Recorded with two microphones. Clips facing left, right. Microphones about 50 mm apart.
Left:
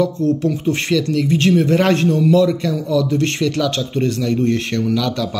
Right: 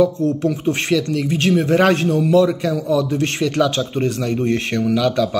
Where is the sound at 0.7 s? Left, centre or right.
Centre.